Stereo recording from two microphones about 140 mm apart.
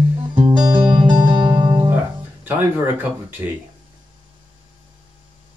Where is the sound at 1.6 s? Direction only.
30° right (ahead or behind).